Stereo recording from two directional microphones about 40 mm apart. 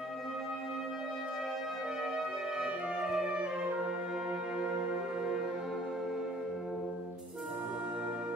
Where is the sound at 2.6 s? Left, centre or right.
Right.